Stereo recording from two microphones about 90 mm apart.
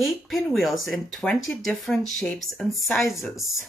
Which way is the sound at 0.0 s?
Centre (ahead or behind).